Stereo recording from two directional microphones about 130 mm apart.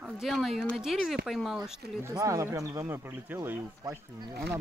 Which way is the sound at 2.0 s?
25° right (ahead or behind).